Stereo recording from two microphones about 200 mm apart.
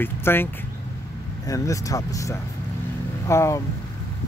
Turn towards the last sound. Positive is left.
turn(degrees=15)  # may be behind; listen again after turning